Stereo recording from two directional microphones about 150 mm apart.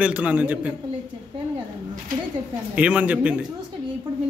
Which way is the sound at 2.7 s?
10° right (ahead or behind).